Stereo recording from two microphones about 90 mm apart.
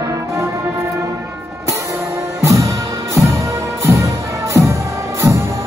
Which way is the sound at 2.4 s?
35° right (ahead or behind).